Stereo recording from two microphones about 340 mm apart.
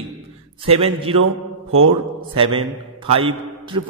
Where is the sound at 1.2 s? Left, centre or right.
Right.